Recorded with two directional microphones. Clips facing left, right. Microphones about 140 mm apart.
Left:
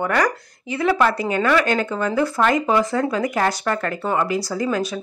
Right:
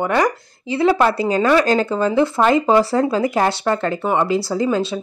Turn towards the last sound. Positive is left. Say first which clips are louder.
# right 4 dB
turn(degrees=-25)  # may be behind; listen again after turning